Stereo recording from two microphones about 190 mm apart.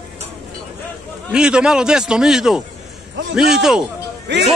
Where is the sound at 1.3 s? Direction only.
5° right (ahead or behind).